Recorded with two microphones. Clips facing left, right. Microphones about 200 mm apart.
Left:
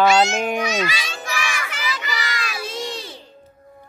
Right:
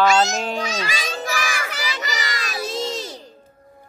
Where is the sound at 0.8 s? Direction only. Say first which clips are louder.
Right 2 dB; 45° right (ahead or behind).